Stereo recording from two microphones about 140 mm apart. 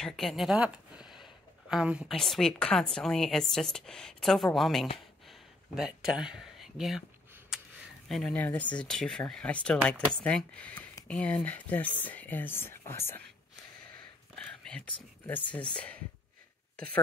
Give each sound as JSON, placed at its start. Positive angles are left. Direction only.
{"t": 0.0, "sound": "speech", "side_deg": 0}
{"t": 4.9, "sound": "a sound", "side_deg": 0}
{"t": 8.1, "sound": "speech", "side_deg": 5}
{"t": 14.4, "sound": "speech", "side_deg": 5}